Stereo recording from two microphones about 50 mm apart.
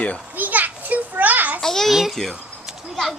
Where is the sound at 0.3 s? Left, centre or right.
Right.